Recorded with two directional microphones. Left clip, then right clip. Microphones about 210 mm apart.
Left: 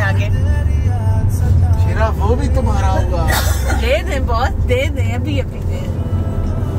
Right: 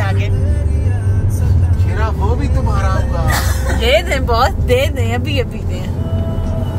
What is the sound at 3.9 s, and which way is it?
Speech, 40° right (ahead or behind).